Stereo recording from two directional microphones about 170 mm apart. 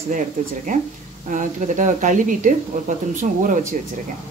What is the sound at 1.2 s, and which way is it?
Speech, 45° right (ahead or behind).